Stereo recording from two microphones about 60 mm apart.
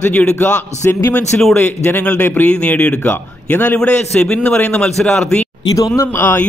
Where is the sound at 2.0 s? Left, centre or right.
Left.